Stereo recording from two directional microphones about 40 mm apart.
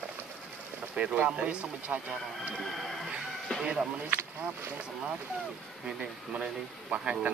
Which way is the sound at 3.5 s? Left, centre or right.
Left.